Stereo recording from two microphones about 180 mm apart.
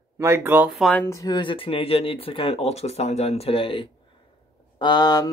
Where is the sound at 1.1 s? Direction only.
20° left (ahead or behind).